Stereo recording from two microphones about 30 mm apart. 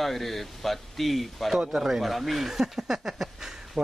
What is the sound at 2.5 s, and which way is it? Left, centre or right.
Speech, centre.